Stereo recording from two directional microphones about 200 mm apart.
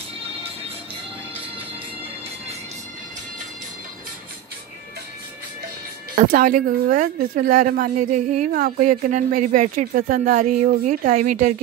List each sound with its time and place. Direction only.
6.1 s a woman's voice: 45° right (ahead or behind)